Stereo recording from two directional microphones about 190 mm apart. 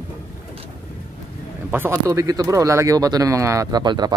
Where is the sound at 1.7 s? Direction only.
10° right (ahead or behind).